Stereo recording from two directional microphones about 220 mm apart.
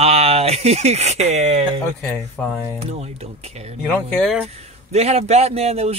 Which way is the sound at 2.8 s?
30° right (ahead or behind).